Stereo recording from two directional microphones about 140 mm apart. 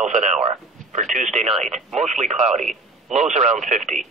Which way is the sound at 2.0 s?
55° right (ahead or behind).